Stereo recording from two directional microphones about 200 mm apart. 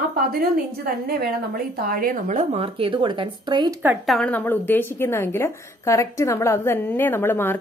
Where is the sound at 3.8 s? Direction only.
5° right (ahead or behind).